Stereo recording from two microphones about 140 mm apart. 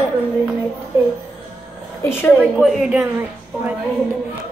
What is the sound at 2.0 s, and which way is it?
Speech, 15° left (ahead or behind).